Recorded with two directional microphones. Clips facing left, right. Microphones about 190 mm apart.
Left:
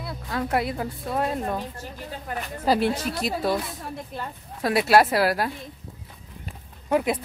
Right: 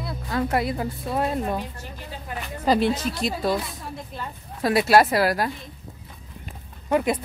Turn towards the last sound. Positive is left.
turn(degrees=5)  # may be behind; listen again after turning